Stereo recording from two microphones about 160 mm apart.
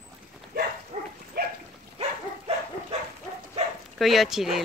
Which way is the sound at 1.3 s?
75° right (ahead or behind).